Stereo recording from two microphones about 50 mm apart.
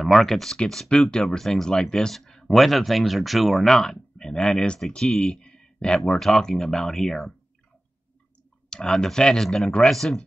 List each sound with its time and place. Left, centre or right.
0.0 s speech: centre
5.2 s a sound: centre
6.1 s speech: centre
8.6 s speech: centre